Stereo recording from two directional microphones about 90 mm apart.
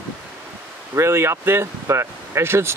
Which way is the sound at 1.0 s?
30° right (ahead or behind).